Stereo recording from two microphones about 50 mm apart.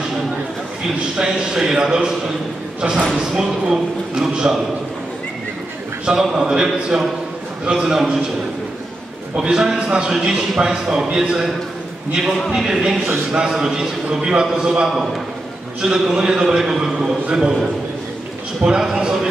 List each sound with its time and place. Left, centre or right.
1.1 s a man's voice: centre
6.0 s a man's voice: centre
9.4 s a man's voice: centre
18.6 s a man's voice: centre